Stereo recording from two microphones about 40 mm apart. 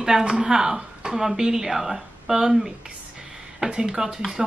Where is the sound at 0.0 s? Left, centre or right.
Centre.